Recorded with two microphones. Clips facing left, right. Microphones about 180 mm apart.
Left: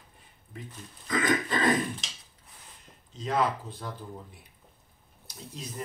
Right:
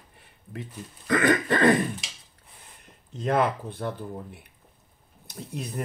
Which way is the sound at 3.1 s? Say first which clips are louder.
Right 4 dB; 60° right (ahead or behind).